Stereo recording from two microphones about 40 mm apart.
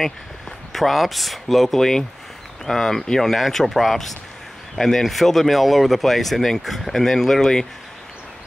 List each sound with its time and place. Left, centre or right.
0.0 s speech: centre